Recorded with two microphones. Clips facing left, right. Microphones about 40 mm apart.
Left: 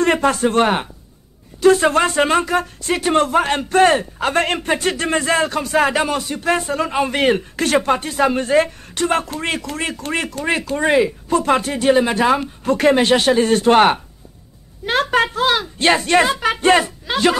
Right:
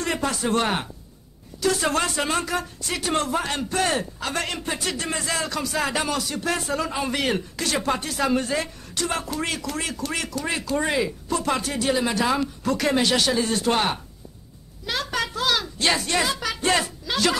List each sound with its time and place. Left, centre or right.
0.0 s a man's voice: left
7.9 s speech: left